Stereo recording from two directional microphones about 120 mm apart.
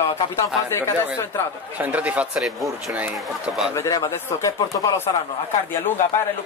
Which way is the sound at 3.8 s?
25° left (ahead or behind).